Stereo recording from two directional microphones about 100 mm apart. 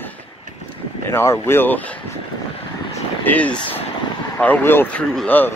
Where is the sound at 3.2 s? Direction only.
15° left (ahead or behind).